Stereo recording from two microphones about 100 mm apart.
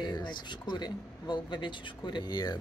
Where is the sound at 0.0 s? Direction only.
50° left (ahead or behind).